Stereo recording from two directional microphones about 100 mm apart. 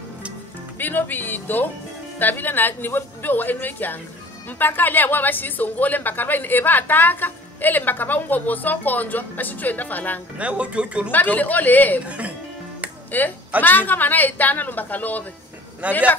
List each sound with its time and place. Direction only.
0.7 s a woman's voice: 20° left (ahead or behind)
10.3 s speech: 10° right (ahead or behind)
11.1 s a woman's voice: 15° left (ahead or behind)
12.0 s speech: 15° right (ahead or behind)
13.1 s a woman's voice: 20° left (ahead or behind)
15.8 s speech: 15° right (ahead or behind)